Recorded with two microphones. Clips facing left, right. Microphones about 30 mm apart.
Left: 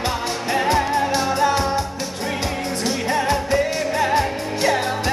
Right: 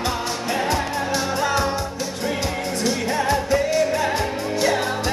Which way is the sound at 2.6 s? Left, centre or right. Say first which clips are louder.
Even; centre.